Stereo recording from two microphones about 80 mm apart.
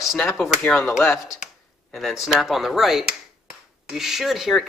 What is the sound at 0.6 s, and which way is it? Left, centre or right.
Speech, centre.